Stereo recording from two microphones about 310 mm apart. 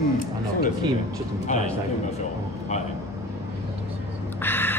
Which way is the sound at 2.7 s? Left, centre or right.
Left.